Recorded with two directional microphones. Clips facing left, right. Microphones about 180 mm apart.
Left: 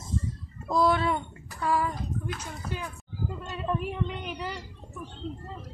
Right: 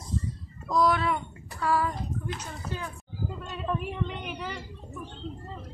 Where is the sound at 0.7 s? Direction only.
25° left (ahead or behind).